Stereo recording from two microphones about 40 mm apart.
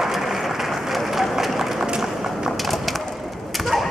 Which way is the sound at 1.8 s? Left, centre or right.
Centre.